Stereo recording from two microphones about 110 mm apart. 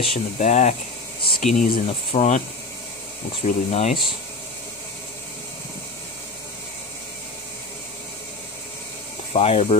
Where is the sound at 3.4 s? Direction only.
75° left (ahead or behind).